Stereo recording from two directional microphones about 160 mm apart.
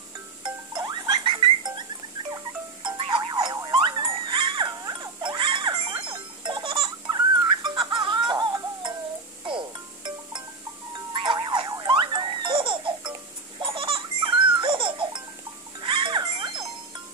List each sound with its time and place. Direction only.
0.7 s rodents: 25° right (ahead or behind)
2.3 s wind chime: 30° right (ahead or behind)
7.6 s music: 30° right (ahead or behind)
11.1 s baby laughter: 30° right (ahead or behind)
13.6 s babbling: 30° right (ahead or behind)
15.8 s music: 30° right (ahead or behind)